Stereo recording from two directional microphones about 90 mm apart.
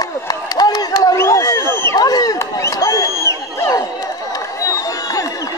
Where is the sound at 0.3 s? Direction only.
45° left (ahead or behind).